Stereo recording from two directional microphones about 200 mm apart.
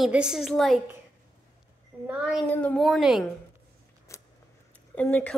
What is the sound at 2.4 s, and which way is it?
Speech, 5° left (ahead or behind).